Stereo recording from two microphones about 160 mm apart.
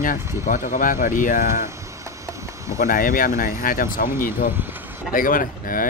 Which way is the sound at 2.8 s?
55° left (ahead or behind).